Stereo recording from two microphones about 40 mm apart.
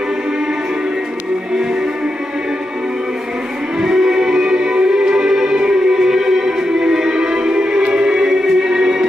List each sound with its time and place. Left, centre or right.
3.8 s music: centre